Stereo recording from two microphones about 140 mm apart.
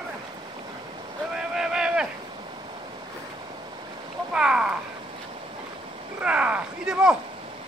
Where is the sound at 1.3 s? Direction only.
5° right (ahead or behind).